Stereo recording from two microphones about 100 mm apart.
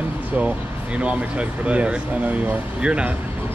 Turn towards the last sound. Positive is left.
turn(degrees=-10)  # may be behind; listen again after turning